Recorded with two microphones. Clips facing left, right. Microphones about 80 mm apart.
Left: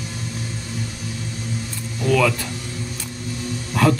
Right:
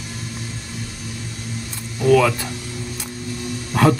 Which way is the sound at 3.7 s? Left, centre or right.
Centre.